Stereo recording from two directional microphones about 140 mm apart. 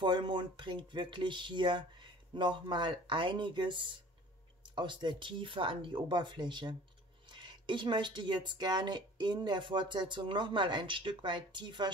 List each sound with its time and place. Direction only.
0.0 s speech: 35° right (ahead or behind)